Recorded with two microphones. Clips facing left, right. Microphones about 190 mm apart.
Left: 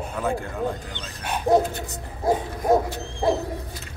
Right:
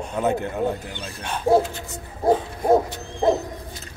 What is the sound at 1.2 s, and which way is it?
Speech, 10° left (ahead or behind).